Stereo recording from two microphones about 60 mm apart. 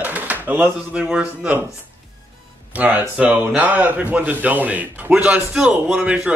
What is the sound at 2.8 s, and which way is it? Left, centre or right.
Speech, right.